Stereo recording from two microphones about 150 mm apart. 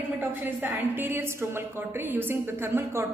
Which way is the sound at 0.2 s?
10° right (ahead or behind).